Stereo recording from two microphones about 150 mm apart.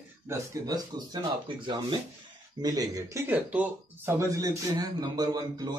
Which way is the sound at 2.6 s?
25° right (ahead or behind).